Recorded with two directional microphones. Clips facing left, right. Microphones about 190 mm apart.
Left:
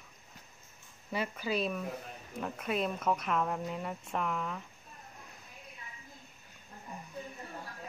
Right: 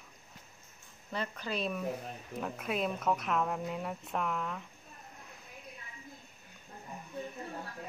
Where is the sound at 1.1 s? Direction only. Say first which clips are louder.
Left 3 dB; 5° left (ahead or behind).